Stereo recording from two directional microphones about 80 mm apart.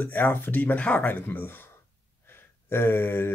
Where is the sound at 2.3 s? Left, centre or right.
Left.